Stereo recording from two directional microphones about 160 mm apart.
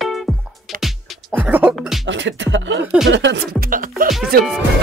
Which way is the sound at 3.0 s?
90° right.